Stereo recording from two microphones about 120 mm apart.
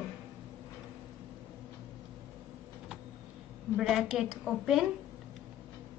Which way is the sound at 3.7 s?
Centre (ahead or behind).